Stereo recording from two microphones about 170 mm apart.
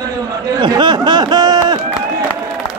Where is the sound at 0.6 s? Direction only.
25° right (ahead or behind).